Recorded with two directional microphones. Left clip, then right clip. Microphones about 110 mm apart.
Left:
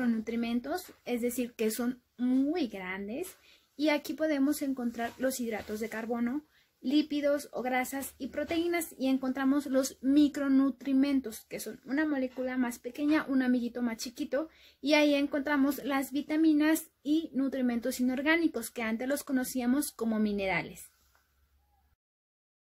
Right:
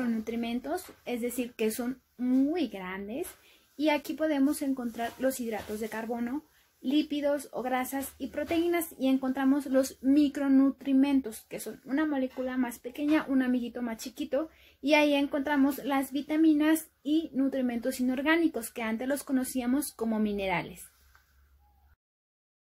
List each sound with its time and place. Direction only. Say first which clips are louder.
0.2 s a child's voice: even; 40° left (ahead or behind)
11.5 s a child's voice: right 1 dB; 50° left (ahead or behind)